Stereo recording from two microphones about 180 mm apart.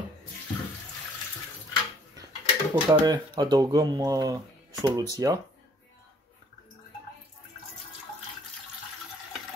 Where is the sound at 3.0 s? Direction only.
20° right (ahead or behind).